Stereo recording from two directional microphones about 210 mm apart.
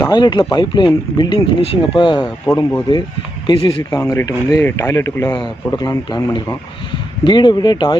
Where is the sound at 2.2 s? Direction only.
10° left (ahead or behind).